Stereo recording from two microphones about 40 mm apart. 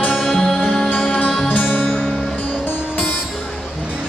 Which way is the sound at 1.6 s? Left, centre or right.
Left.